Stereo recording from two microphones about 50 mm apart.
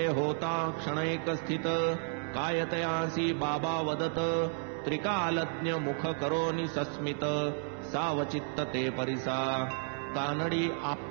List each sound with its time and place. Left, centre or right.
0.0 s mantra: centre